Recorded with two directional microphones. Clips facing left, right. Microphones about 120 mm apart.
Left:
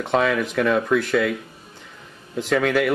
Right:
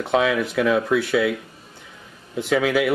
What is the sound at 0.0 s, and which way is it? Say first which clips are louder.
Speech: even; centre (ahead or behind).